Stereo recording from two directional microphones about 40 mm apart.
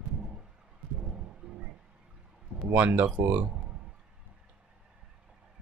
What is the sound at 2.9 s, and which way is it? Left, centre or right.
Speech, right.